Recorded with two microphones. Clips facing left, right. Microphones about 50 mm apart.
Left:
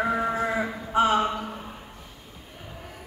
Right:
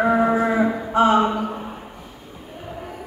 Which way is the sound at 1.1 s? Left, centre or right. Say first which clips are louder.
Right 6 dB; centre.